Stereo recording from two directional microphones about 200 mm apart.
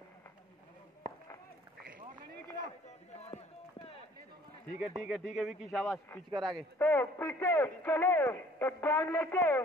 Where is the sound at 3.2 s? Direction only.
30° left (ahead or behind).